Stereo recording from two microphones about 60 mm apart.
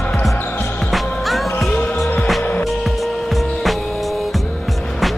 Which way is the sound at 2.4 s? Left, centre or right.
Left.